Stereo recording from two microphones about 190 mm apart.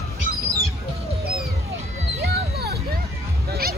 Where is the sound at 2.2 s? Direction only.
55° right (ahead or behind).